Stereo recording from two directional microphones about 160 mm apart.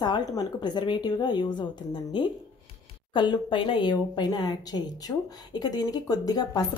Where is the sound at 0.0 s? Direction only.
25° left (ahead or behind).